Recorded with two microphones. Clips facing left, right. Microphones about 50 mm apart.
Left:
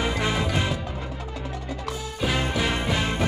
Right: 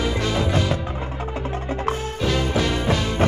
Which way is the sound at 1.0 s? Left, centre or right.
Right.